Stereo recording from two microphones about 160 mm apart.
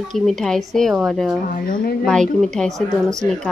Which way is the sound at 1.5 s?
60° left (ahead or behind).